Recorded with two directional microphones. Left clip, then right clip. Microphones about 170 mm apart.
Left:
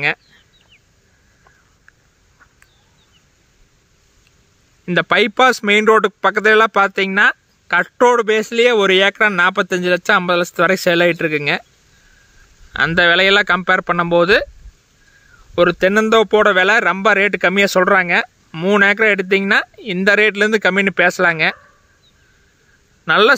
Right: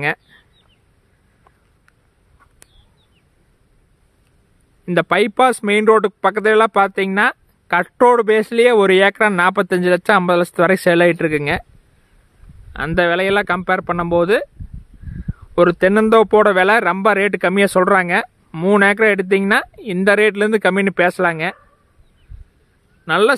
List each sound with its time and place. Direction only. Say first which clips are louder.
4.8 s speech: left 1 dB; 10° right (ahead or behind)
8.0 s speech: right 2 dB; 30° right (ahead or behind)
12.7 s speech: left 4 dB; 5° right (ahead or behind)
15.5 s speech: even; 30° right (ahead or behind); by 21.5 s 10° right (ahead or behind)
23.0 s speech: left 2 dB; centre (ahead or behind)